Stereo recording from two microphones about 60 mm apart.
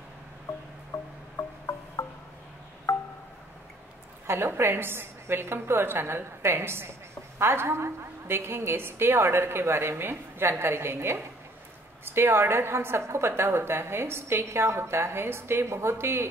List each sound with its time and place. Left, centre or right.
0.9 s music: left
1.4 s music: left
2.0 s music: left
4.3 s a woman's voice: right